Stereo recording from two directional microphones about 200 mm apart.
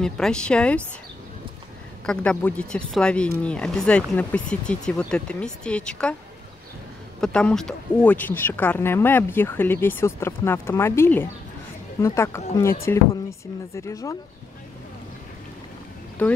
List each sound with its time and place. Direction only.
0.0 s speech: 5° left (ahead or behind)
2.0 s speech: 5° left (ahead or behind)
7.2 s speech: 5° left (ahead or behind)
16.2 s speech: 5° left (ahead or behind)